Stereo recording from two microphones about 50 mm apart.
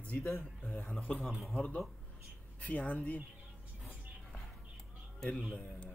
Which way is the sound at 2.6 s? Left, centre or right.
Left.